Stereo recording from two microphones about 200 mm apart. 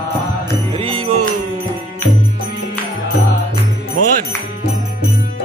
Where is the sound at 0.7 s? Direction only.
25° right (ahead or behind).